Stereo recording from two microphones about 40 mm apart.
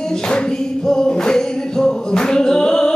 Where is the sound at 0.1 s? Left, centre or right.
Centre.